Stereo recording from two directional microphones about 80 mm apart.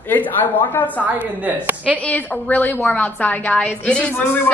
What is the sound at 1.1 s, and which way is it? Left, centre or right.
Speech, right.